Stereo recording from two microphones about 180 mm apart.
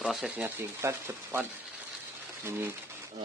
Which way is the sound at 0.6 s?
15° right (ahead or behind).